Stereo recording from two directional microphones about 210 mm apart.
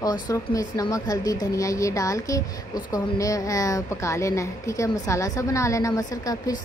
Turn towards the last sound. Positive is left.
turn(degrees=15)  # may be behind; listen again after turning